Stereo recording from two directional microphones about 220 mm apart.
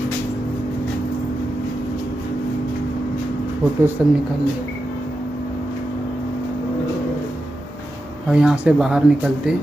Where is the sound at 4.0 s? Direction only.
5° right (ahead or behind).